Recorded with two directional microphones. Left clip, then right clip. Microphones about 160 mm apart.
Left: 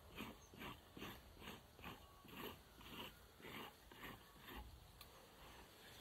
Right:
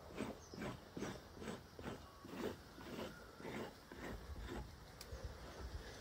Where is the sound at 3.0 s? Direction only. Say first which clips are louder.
Right 5 dB; 15° left (ahead or behind).